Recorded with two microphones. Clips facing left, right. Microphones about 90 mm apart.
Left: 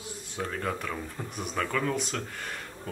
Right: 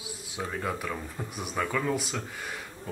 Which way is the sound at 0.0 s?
5° right (ahead or behind).